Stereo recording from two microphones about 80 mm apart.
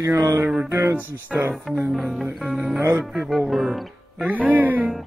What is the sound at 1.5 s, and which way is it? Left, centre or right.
Speech, centre.